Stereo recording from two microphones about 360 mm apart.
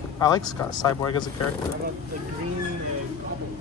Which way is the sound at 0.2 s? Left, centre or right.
Centre.